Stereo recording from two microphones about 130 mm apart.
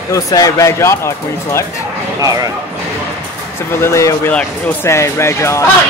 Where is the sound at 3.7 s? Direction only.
20° left (ahead or behind).